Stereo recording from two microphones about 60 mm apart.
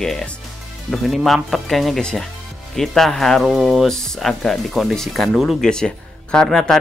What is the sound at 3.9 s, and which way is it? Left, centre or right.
Speech, centre.